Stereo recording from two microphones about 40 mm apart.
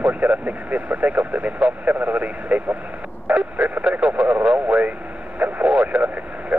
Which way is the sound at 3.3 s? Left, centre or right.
Right.